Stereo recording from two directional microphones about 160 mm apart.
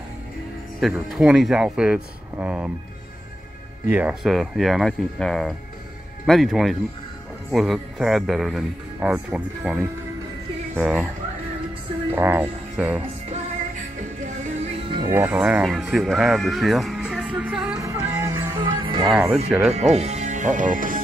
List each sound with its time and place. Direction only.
0.7 s speech: centre (ahead or behind)
3.9 s speech: 5° right (ahead or behind)
12.1 s speech: 15° right (ahead or behind)
14.9 s music: 25° right (ahead or behind)
15.1 s speech: 10° right (ahead or behind)
17.7 s music: 20° right (ahead or behind)
19.0 s speech: centre (ahead or behind)
19.7 s speech: 45° right (ahead or behind)